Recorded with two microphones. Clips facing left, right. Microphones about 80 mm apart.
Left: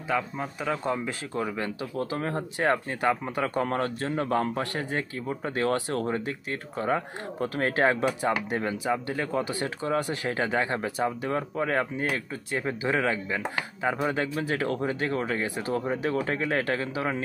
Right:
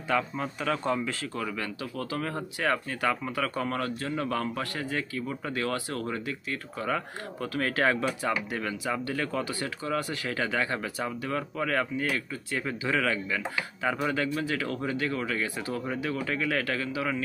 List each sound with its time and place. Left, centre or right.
0.1 s speech: centre; by 17.2 s left